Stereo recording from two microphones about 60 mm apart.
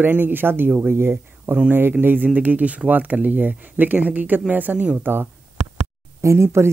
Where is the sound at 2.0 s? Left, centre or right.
Right.